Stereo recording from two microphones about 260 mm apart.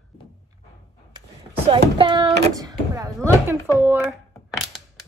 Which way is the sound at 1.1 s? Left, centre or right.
Right.